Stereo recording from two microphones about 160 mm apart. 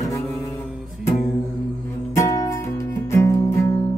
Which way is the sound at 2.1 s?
20° left (ahead or behind).